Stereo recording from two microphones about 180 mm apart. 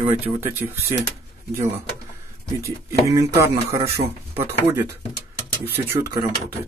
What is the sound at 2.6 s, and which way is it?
Speech, 15° right (ahead or behind).